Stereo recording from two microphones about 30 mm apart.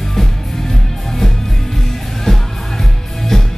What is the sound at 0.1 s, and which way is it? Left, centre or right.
Music, centre.